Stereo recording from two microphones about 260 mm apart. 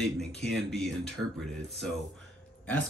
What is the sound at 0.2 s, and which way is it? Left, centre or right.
Speech, centre.